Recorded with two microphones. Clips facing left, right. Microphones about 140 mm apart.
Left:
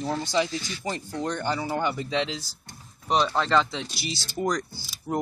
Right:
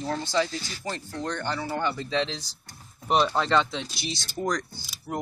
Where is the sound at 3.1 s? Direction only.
5° right (ahead or behind).